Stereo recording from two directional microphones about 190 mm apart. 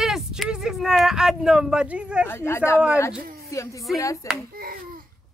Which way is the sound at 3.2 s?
50° right (ahead or behind).